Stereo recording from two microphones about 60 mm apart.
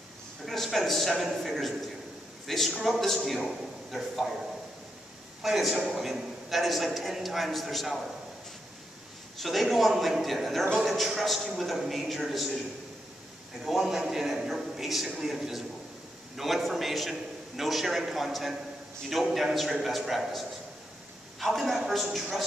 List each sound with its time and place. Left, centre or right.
0.5 s a man's voice: centre
5.4 s a man's voice: centre
9.4 s a man's voice: centre
13.7 s a man's voice: centre